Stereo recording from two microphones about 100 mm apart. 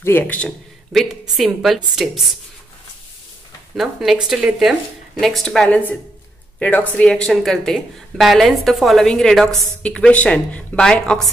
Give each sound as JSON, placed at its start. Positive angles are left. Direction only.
{"t": 0.0, "sound": "speech", "side_deg": 20}
{"t": 1.3, "sound": "speech", "side_deg": 0}
{"t": 3.7, "sound": "speech", "side_deg": -5}
{"t": 5.7, "sound": "speech", "side_deg": 15}